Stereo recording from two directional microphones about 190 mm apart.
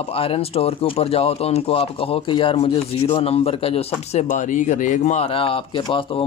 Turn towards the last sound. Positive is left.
turn(degrees=25)  # may be behind; listen again after turning